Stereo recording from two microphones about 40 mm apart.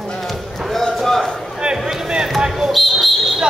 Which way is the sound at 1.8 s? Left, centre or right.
Centre.